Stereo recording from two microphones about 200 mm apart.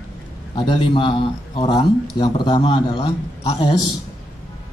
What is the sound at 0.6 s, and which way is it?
A man's voice, 25° left (ahead or behind).